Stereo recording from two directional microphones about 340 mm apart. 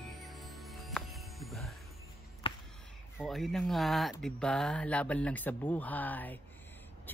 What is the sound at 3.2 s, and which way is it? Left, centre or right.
Speech, centre.